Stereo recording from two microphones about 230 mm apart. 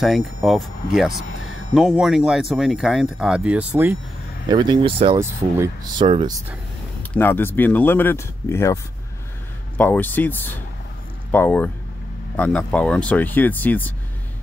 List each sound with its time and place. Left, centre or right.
0.0 s speech: centre
4.5 s speech: centre
5.2 s speech: centre
6.0 s speech: right
7.0 s speech: centre
9.8 s speech: centre